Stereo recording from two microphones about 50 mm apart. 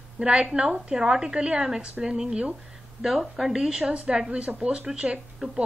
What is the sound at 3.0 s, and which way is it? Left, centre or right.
A woman's voice, centre.